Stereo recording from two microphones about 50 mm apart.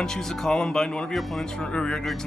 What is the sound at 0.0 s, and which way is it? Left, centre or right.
Speech, centre.